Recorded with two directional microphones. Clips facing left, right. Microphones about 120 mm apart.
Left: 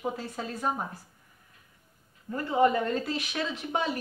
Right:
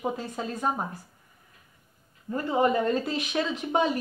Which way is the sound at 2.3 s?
20° right (ahead or behind).